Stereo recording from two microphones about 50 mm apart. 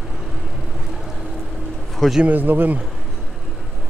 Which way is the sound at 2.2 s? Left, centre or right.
Right.